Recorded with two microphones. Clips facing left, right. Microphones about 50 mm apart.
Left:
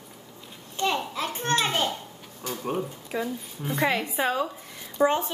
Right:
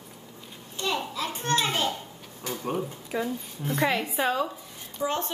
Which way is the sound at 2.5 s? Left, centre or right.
Centre.